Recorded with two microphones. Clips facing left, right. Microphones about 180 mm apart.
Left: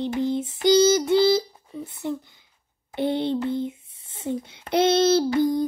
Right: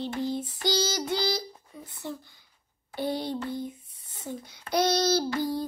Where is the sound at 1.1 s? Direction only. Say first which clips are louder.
Left 11 dB; 25° left (ahead or behind).